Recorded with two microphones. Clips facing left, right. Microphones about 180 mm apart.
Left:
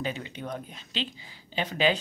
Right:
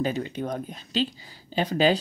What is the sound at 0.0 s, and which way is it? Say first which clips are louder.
A woman's voice: right 6 dB; 40° right (ahead or behind).